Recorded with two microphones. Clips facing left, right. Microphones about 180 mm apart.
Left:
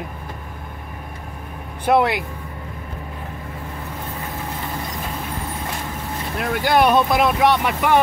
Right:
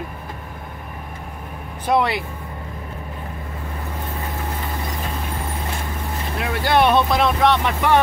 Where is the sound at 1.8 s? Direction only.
Centre (ahead or behind).